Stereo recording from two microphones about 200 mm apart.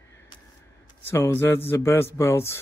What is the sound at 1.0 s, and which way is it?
Speech, 10° left (ahead or behind).